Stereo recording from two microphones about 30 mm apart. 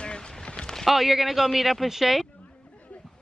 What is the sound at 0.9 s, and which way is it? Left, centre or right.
A man's voice, centre.